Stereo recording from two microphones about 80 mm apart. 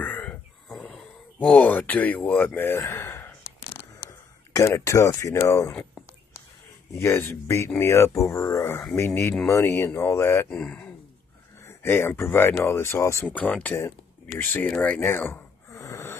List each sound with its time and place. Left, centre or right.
0.0 s a sound: centre
1.4 s speech: centre
2.9 s gasp: left
4.1 s speech: left
5.7 s speech: centre
7.0 s speech: left
10.5 s speech: centre
11.6 s speech: left
13.3 s speech: centre
15.0 s speech: left
15.7 s wheeze: left